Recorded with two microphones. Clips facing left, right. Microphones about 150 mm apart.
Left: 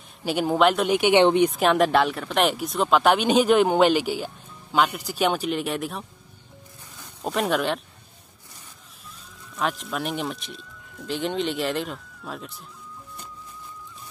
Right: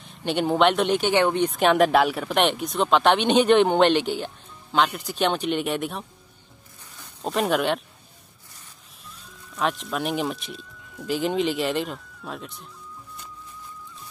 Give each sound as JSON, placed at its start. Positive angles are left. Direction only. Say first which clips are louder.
{"t": 0.2, "sound": "speech", "louder": "even", "side_deg": 5}
{"t": 1.5, "sound": "speech", "louder": "right 1 dB", "side_deg": 0}
{"t": 7.2, "sound": "speech", "louder": "right 1 dB", "side_deg": 0}
{"t": 9.6, "sound": "speech", "louder": "right 1 dB", "side_deg": 0}